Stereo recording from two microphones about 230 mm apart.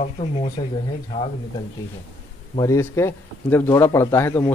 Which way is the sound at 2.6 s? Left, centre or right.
Centre.